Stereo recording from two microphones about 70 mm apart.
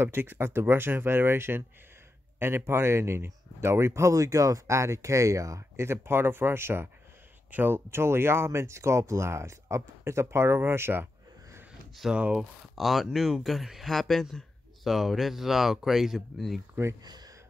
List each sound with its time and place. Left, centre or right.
0.0 s speech: right
12.2 s speech: centre
12.7 s speech: centre
17.0 s speech: right